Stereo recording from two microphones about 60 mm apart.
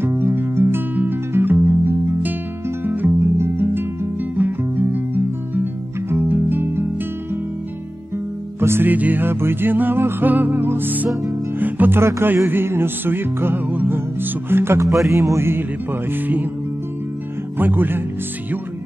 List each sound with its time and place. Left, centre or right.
0.0 s music: right
8.5 s music: right
8.9 s music: right
12.0 s music: right
16.1 s music: right
17.6 s music: right